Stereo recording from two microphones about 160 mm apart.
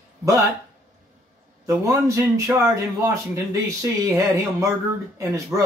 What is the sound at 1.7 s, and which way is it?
Speech, 20° right (ahead or behind).